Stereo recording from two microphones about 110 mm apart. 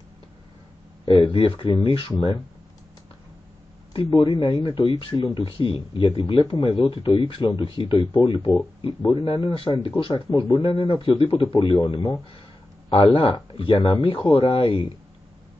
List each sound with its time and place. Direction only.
1.0 s speech: 55° left (ahead or behind)
3.9 s speech: 50° left (ahead or behind)
13.0 s speech: 50° left (ahead or behind)